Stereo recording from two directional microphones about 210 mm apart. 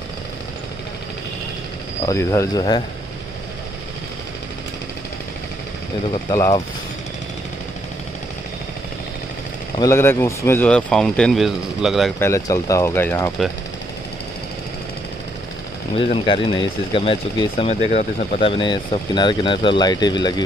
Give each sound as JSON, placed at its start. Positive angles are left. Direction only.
{"t": 2.0, "sound": "speech", "side_deg": 15}
{"t": 6.3, "sound": "speech", "side_deg": 15}
{"t": 9.8, "sound": "speech", "side_deg": 15}
{"t": 12.2, "sound": "speech", "side_deg": 15}
{"t": 16.0, "sound": "speech", "side_deg": 25}
{"t": 18.6, "sound": "speech", "side_deg": 20}